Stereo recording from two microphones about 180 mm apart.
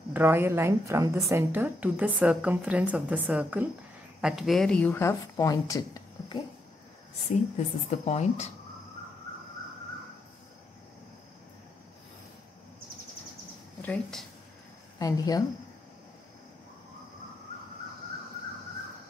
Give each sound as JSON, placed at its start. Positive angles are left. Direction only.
{"t": 0.1, "sound": "a woman's voice", "side_deg": -10}
{"t": 7.5, "sound": "a woman's voice", "side_deg": 40}
{"t": 13.7, "sound": "speech", "side_deg": 5}
{"t": 15.0, "sound": "a woman's voice", "side_deg": 20}